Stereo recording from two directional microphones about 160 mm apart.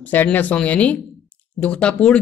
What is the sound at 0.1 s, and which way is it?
Speech, 10° left (ahead or behind).